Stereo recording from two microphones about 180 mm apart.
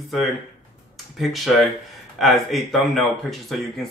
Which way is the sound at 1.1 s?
Centre (ahead or behind).